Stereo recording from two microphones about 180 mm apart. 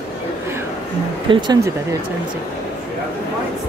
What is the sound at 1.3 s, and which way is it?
Speech, 25° right (ahead or behind).